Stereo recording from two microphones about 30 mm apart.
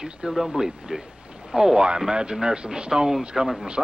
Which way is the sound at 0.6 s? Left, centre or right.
Centre.